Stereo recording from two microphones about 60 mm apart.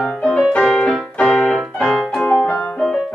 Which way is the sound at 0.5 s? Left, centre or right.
Centre.